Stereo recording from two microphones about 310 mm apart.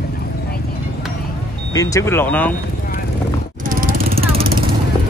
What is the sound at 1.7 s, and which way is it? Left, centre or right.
Speech, centre.